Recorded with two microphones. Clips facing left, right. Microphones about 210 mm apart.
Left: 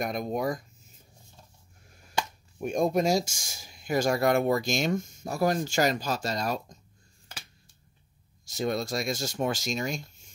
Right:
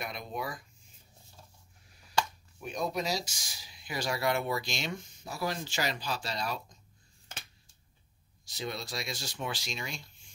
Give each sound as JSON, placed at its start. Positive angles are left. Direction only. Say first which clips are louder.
{"t": 0.0, "sound": "speech", "louder": "left 9 dB", "side_deg": 45}
{"t": 1.9, "sound": "a sound", "louder": "left 6 dB", "side_deg": 50}
{"t": 2.6, "sound": "speech", "louder": "left 9 dB", "side_deg": 50}
{"t": 8.5, "sound": "speech", "louder": "left 9 dB", "side_deg": 45}